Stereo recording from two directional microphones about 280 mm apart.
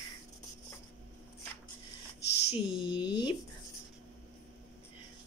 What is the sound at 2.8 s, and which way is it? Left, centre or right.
Speech, centre.